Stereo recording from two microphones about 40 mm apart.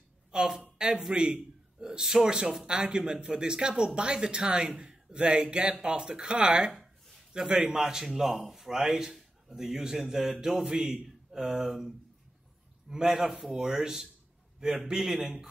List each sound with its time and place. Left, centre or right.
0.3 s a woman's voice: centre
12.9 s a man's voice: centre